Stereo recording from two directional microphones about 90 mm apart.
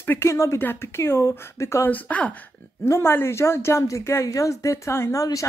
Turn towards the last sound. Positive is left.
turn(degrees=40)  # may be behind; listen again after turning